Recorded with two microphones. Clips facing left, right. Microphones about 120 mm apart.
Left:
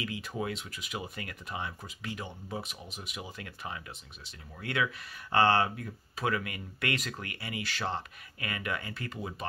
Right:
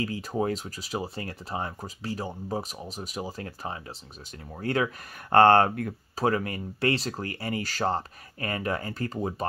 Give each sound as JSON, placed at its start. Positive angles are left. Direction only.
{"t": 0.0, "sound": "speech", "side_deg": -40}
{"t": 6.1, "sound": "speech", "side_deg": -35}